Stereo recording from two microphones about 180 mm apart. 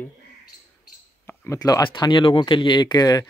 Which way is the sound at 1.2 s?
10° left (ahead or behind).